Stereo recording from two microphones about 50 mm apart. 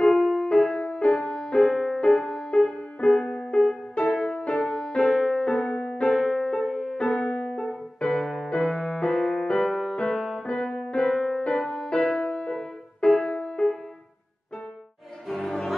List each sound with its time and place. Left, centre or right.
0.0 s music: centre
6.6 s music: centre
7.0 s music: centre
15.2 s music: centre